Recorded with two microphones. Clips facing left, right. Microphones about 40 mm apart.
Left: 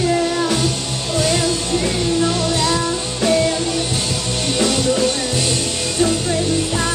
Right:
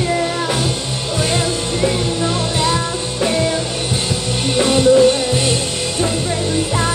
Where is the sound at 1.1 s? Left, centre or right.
Right.